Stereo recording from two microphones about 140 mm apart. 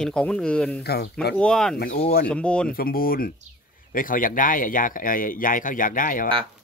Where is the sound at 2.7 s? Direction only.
90° left.